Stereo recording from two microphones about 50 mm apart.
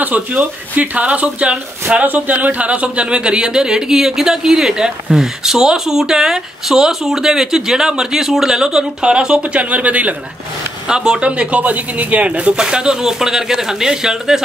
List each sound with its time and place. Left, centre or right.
0.0 s speech: right
2.0 s speech: right
10.9 s speech: centre